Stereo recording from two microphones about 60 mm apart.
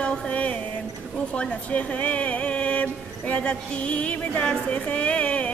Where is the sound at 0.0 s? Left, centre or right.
Centre.